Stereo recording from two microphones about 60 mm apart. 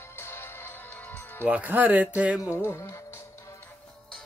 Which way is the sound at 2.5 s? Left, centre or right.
Left.